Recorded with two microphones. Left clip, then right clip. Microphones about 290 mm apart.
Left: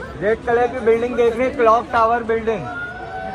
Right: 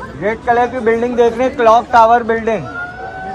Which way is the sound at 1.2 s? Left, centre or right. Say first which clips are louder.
Right 4 dB; right.